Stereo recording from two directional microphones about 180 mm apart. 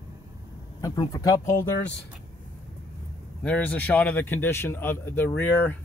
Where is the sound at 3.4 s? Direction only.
10° left (ahead or behind).